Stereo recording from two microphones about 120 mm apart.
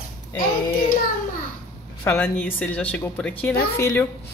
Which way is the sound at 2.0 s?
15° left (ahead or behind).